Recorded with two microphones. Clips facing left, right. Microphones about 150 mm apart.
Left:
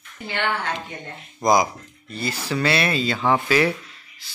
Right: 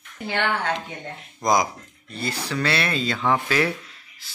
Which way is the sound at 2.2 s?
5° left (ahead or behind).